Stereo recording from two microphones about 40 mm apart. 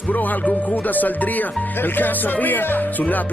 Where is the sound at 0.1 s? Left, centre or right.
Left.